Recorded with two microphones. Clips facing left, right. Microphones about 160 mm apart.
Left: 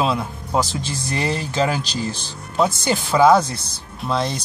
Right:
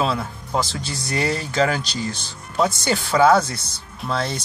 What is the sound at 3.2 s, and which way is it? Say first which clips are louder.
Speech: left 2 dB; 15° left (ahead or behind).